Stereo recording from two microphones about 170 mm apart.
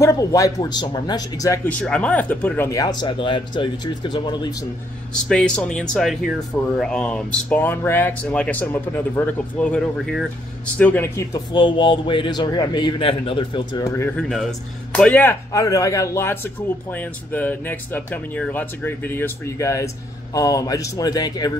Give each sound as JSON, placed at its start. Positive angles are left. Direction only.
{"t": 0.0, "sound": "speech", "side_deg": 20}
{"t": 1.8, "sound": "speech", "side_deg": 5}
{"t": 5.3, "sound": "speech", "side_deg": 5}
{"t": 11.5, "sound": "speech", "side_deg": 30}
{"t": 13.9, "sound": "speech", "side_deg": 10}